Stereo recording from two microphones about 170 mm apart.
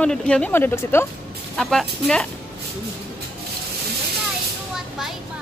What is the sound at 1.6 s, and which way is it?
Speech, 5° left (ahead or behind).